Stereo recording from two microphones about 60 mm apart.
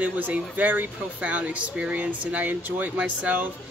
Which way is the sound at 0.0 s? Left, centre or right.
Right.